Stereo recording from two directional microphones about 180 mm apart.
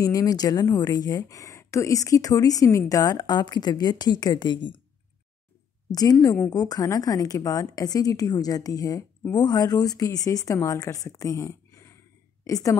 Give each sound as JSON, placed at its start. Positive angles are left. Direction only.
{"t": 0.0, "sound": "a woman's voice", "side_deg": 20}
{"t": 5.9, "sound": "a woman's voice", "side_deg": 20}